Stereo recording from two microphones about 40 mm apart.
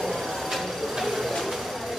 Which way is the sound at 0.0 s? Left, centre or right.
Centre.